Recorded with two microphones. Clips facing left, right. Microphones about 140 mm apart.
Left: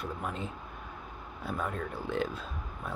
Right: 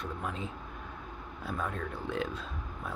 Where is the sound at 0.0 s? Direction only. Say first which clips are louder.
Left 1 dB; centre (ahead or behind).